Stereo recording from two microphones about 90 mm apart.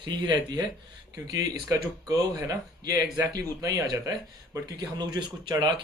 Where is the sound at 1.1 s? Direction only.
40° right (ahead or behind).